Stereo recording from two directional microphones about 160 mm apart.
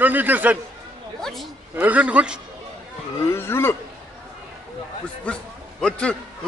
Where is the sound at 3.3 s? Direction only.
15° left (ahead or behind).